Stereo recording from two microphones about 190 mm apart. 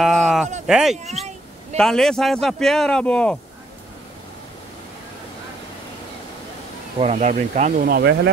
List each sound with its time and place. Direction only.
0.0 s a sound: centre (ahead or behind)
0.7 s speech: 5° right (ahead or behind)
7.0 s speech: 35° right (ahead or behind)
7.8 s speech: 60° right (ahead or behind)